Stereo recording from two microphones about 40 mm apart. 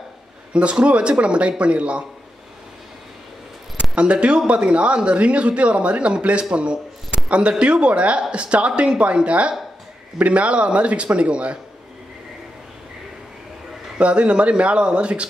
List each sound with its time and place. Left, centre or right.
0.5 s speech: right
3.9 s speech: right
13.9 s speech: right